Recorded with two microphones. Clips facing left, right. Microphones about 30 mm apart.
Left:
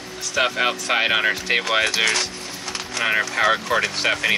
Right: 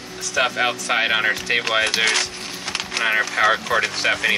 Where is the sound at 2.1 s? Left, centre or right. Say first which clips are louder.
Right 1 dB; right.